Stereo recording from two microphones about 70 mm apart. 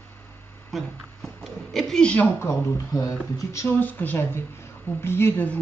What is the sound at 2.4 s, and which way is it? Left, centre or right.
Speech, left.